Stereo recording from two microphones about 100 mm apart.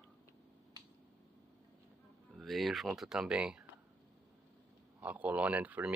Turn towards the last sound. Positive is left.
turn(degrees=-15)  # may be behind; listen again after turning